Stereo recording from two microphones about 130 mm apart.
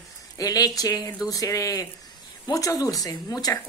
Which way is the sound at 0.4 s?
30° left (ahead or behind).